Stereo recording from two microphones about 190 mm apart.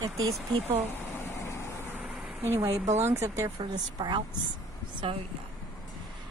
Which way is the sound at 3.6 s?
25° right (ahead or behind).